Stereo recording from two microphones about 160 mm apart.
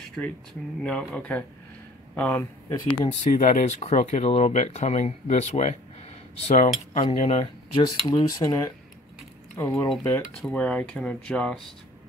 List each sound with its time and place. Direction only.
0.2 s speech: 5° left (ahead or behind)
3.1 s speech: 55° left (ahead or behind)
7.0 s speech: 35° left (ahead or behind)
7.8 s speech: 25° left (ahead or behind); by 11.7 s 5° left (ahead or behind)